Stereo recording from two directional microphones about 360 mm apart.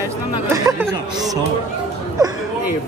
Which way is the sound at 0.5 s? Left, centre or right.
Centre.